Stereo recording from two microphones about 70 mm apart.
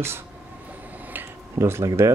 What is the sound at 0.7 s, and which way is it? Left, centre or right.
Vehicle, right.